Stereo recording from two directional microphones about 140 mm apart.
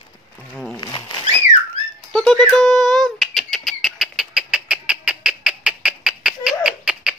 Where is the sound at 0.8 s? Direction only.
30° left (ahead or behind).